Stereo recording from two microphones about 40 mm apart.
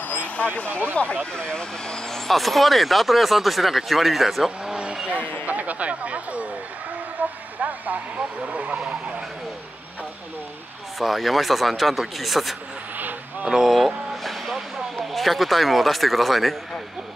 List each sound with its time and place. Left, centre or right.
0.6 s speech: left
2.1 s speech: centre
5.0 s speech: right
7.2 s speech: right
11.0 s speech: centre
15.0 s speech: centre